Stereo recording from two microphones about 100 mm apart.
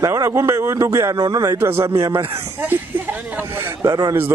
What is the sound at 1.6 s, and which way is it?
Speech, 25° right (ahead or behind).